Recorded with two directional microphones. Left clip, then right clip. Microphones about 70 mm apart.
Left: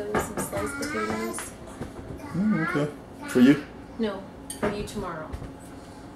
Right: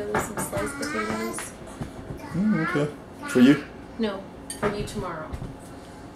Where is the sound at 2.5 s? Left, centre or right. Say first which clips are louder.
Right 1 dB; centre.